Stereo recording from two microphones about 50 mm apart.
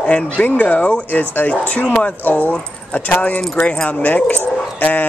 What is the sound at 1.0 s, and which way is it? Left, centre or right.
Speech, left.